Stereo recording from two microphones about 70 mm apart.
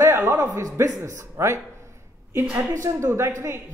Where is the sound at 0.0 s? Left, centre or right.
Right.